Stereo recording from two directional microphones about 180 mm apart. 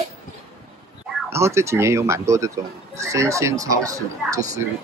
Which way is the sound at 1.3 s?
15° right (ahead or behind).